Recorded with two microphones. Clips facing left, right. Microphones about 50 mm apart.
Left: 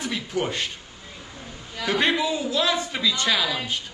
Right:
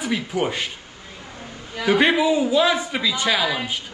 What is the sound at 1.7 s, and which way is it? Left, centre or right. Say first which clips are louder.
A man's voice: right 5 dB; centre.